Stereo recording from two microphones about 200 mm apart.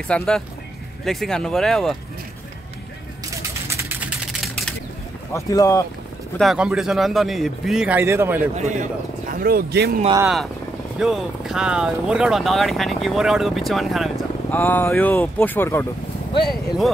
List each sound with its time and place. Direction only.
0.1 s speech: 5° left (ahead or behind)
3.3 s music: 15° right (ahead or behind)
5.3 s speech: 15° left (ahead or behind)
6.3 s speech: centre (ahead or behind)
8.5 s a man's voice: 35° right (ahead or behind)
9.3 s speech: 45° right (ahead or behind)
10.2 s speech: centre (ahead or behind)